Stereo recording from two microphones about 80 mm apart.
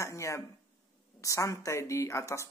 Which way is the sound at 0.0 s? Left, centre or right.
Left.